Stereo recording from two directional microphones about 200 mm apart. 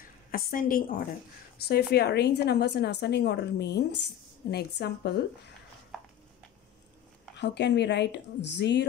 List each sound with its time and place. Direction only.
0.3 s a woman's voice: 45° left (ahead or behind)
7.3 s a woman's voice: 60° left (ahead or behind)